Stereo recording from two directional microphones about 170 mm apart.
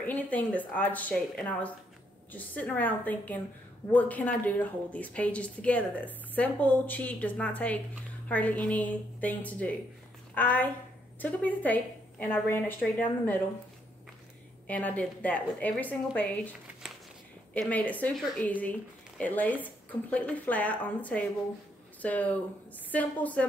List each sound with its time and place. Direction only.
0.0 s a woman's voice: 10° left (ahead or behind)
14.7 s a woman's voice: 10° left (ahead or behind)
17.6 s a woman's voice: 10° left (ahead or behind)